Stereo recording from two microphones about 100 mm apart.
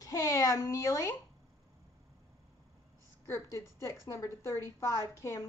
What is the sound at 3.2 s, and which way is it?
A woman's voice, 30° left (ahead or behind).